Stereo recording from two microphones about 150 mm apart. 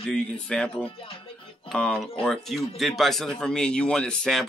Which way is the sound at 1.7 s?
5° left (ahead or behind).